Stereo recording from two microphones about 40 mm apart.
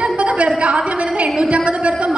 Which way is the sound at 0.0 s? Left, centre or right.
Right.